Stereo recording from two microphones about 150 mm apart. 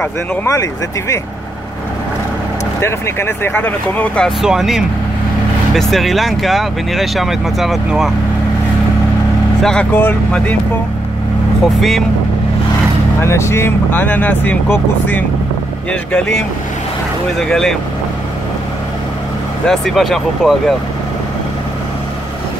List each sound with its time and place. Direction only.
0.0 s speech: 20° left (ahead or behind)
2.8 s speech: 15° left (ahead or behind)
4.4 s speech: 5° right (ahead or behind)
9.6 s speech: 5° left (ahead or behind)
11.6 s speech: centre (ahead or behind)
13.2 s speech: 15° left (ahead or behind)
15.9 s speech: 5° left (ahead or behind)
19.7 s speech: centre (ahead or behind)